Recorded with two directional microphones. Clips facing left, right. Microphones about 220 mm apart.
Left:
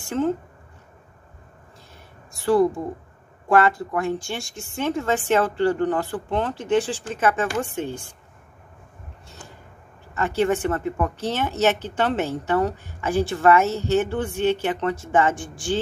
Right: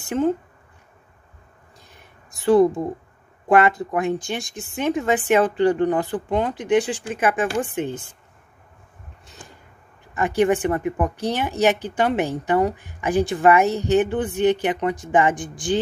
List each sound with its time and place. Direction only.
0.0 s speech: 15° right (ahead or behind)
2.0 s a sound: 20° right (ahead or behind)
3.4 s speech: 20° right (ahead or behind)
10.1 s speech: 15° right (ahead or behind)